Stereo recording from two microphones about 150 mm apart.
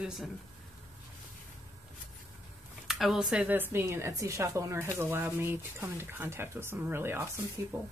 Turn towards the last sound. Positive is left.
turn(degrees=-15)  # may be behind; listen again after turning